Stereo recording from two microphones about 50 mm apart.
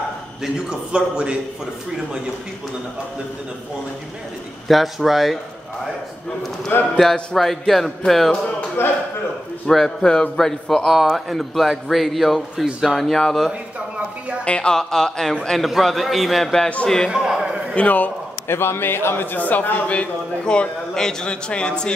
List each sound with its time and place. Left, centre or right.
0.4 s a man's voice: centre
4.6 s speech: centre
7.0 s speech: centre
8.3 s a man's voice: left
9.7 s a man's voice: centre
13.5 s speech: right
14.4 s a man's voice: centre
15.6 s speech: centre
16.8 s a man's voice: centre
17.2 s a man's voice: centre
17.7 s a man's voice: left
18.5 s a man's voice: left
19.3 s a man's voice: left